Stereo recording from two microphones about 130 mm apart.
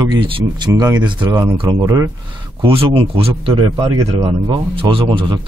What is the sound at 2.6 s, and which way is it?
A man's voice, 45° right (ahead or behind).